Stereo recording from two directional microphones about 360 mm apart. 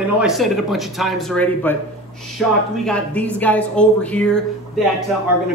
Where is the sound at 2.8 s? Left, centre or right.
Centre.